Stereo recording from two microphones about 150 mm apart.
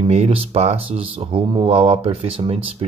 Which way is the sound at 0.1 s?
40° right (ahead or behind).